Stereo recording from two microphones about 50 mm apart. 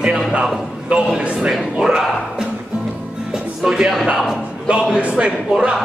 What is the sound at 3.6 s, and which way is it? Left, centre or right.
Speech, centre.